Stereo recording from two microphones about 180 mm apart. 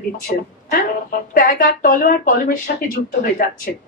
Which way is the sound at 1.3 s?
50° left (ahead or behind).